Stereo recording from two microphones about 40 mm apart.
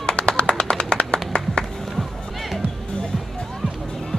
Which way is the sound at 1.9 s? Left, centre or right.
Centre.